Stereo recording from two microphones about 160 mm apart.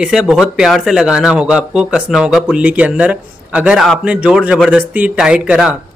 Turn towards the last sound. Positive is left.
turn(degrees=-5)  # may be behind; listen again after turning